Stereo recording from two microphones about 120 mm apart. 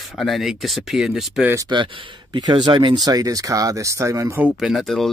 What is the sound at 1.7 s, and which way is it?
Speech, 45° right (ahead or behind).